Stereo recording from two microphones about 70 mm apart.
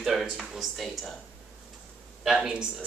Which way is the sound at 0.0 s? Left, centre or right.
Centre.